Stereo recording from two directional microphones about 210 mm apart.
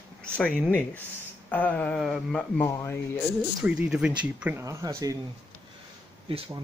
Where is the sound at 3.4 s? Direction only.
5° right (ahead or behind).